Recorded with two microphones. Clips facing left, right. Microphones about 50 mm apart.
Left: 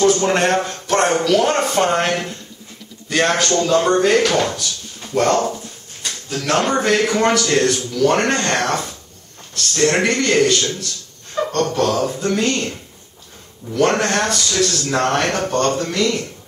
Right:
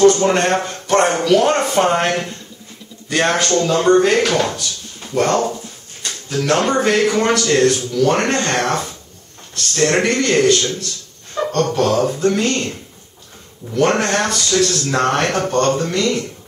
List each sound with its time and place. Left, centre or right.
0.0 s speech: centre
6.3 s speech: centre
9.9 s speech: centre
13.7 s speech: centre